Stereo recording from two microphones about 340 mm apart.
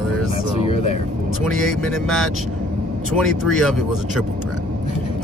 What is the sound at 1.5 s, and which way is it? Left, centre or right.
Speech, centre.